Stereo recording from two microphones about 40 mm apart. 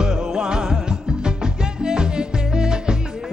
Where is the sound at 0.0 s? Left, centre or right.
Centre.